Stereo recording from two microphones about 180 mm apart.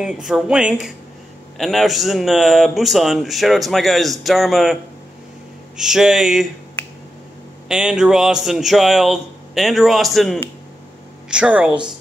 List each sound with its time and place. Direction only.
0.0 s speech: 5° right (ahead or behind)
5.8 s speech: 5° right (ahead or behind)
7.6 s speech: 5° right (ahead or behind)